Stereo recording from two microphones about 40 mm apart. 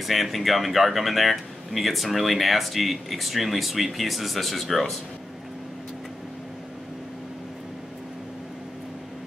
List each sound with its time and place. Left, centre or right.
0.0 s speech: centre